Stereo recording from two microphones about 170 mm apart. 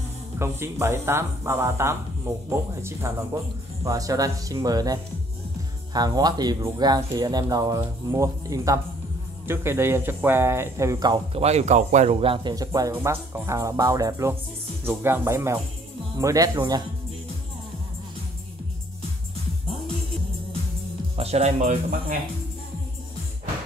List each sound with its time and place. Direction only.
0.4 s speech: 15° right (ahead or behind)
5.9 s speech: 25° right (ahead or behind)
11.3 s speech: 40° right (ahead or behind); by 16.8 s 20° right (ahead or behind)
21.2 s speech: 40° right (ahead or behind)